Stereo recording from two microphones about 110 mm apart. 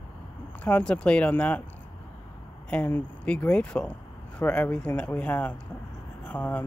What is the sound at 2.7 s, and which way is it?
Speech, 10° left (ahead or behind).